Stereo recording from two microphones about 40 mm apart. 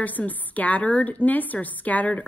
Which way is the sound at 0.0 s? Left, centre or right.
Left.